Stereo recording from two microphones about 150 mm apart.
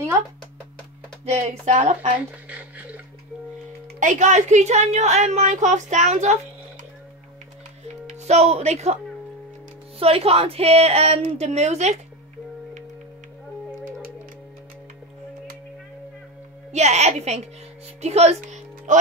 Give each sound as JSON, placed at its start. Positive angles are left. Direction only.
{"t": 1.2, "sound": "a woman's voice", "side_deg": -50}
{"t": 2.5, "sound": "a sound", "side_deg": -10}
{"t": 4.0, "sound": "a woman's voice", "side_deg": -55}
{"t": 8.1, "sound": "a woman's voice", "side_deg": -50}
{"t": 16.7, "sound": "a woman's voice", "side_deg": -50}
{"t": 18.0, "sound": "music", "side_deg": -45}